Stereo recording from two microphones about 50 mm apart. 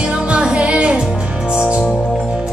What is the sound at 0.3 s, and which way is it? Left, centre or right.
Music, centre.